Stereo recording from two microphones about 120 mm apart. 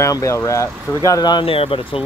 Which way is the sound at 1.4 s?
50° left (ahead or behind).